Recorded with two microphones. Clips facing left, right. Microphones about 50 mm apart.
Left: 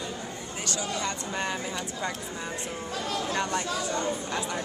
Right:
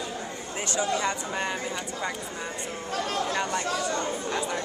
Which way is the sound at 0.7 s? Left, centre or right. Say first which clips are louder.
Right 6 dB; right.